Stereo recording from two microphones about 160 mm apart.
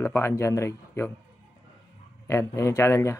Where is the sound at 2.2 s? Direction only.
15° left (ahead or behind).